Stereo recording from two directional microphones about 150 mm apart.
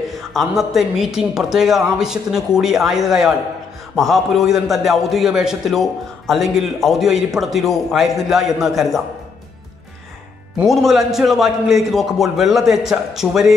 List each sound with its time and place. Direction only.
0.3 s a man's voice: centre (ahead or behind)
10.6 s a man's voice: centre (ahead or behind)